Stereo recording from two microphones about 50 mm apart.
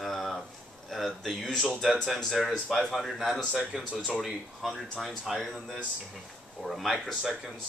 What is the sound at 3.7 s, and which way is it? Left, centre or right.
Speech, centre.